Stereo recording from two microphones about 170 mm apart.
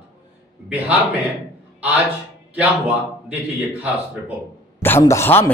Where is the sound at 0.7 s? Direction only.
10° right (ahead or behind).